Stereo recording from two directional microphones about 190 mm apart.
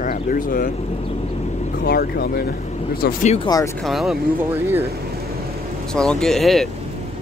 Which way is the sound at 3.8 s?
Centre (ahead or behind).